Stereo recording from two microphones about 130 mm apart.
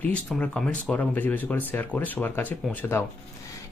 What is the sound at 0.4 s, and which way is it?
Speech, 10° left (ahead or behind).